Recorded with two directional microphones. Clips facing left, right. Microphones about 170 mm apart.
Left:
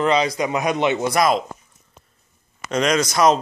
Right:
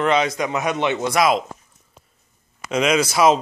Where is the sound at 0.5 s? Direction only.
15° left (ahead or behind).